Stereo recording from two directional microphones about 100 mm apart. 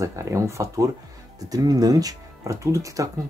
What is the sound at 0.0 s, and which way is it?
Speech, 30° right (ahead or behind).